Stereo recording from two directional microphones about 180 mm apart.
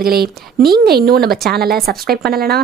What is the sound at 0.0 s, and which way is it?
Speech, 60° right (ahead or behind).